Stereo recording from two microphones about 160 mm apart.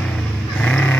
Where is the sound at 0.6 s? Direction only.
10° left (ahead or behind).